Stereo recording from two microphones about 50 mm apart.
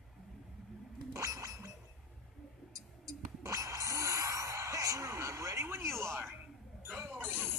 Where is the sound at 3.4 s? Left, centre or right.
Right.